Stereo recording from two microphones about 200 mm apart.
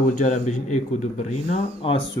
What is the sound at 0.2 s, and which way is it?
Speech, 35° left (ahead or behind).